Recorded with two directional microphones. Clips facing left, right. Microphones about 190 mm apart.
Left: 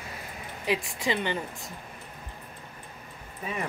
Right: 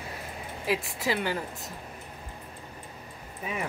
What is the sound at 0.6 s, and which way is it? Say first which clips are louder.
A woman's voice: left 1 dB; centre (ahead or behind).